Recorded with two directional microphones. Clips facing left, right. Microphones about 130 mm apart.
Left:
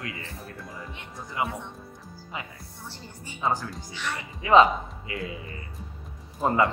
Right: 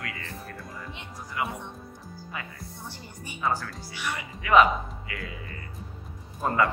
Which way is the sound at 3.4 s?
20° left (ahead or behind).